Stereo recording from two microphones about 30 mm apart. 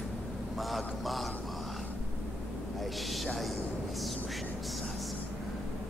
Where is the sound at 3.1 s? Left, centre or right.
Centre.